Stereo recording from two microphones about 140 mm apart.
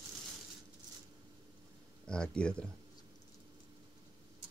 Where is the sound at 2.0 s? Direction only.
5° left (ahead or behind).